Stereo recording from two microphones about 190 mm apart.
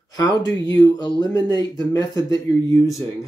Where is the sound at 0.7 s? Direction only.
20° left (ahead or behind).